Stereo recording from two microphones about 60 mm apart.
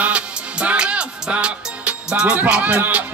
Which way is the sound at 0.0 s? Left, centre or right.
Right.